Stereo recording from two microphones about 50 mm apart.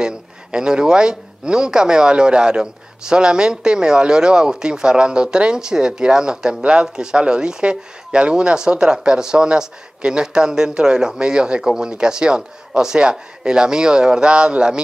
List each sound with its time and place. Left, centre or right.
0.0 s speech: centre